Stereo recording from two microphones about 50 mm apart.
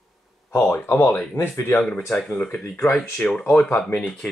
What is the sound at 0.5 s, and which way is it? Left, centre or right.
Speech, left.